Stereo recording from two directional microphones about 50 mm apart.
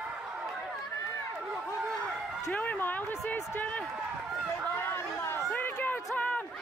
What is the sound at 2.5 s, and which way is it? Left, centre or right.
Speech, left.